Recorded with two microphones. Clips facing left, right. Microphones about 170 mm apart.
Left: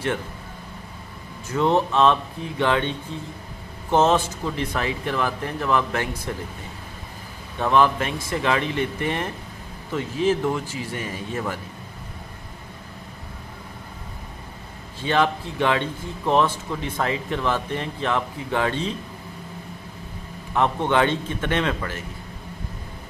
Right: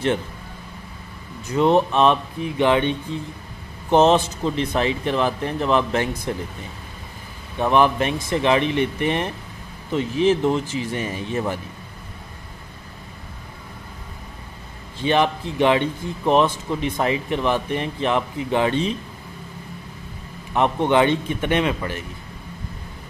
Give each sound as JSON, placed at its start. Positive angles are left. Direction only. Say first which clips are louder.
{"t": 1.5, "sound": "a man's voice", "louder": "right 3 dB", "side_deg": -15}
{"t": 7.5, "sound": "a man's voice", "louder": "right 2 dB", "side_deg": -15}
{"t": 15.0, "sound": "a man's voice", "louder": "right 2 dB", "side_deg": -20}
{"t": 20.5, "sound": "speech", "louder": "right 3 dB", "side_deg": -15}